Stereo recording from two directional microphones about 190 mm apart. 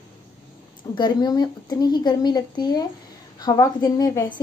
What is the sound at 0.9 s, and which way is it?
A woman's voice, 20° left (ahead or behind).